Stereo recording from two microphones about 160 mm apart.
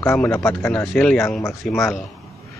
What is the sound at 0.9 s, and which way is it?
Speech, 5° left (ahead or behind).